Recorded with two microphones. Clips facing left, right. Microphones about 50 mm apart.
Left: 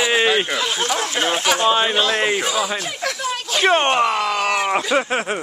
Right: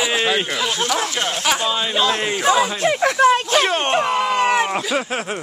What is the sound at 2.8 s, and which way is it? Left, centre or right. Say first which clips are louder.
Speech: right 11 dB; right.